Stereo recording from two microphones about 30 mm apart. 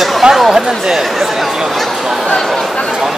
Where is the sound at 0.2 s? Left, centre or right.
Right.